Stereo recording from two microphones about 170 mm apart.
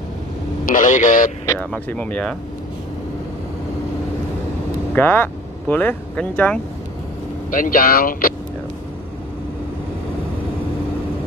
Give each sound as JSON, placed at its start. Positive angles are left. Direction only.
{"t": 0.7, "sound": "a man's voice", "side_deg": 50}
{"t": 1.4, "sound": "speech", "side_deg": 10}
{"t": 4.9, "sound": "speech", "side_deg": 10}
{"t": 7.5, "sound": "speech", "side_deg": 55}